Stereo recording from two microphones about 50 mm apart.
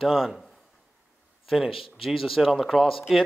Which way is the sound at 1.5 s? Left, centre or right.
Centre.